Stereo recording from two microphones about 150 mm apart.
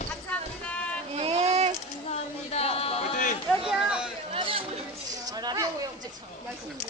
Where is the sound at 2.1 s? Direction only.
40° left (ahead or behind).